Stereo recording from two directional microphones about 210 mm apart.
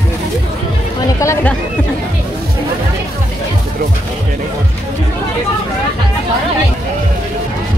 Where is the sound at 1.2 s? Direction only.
10° left (ahead or behind).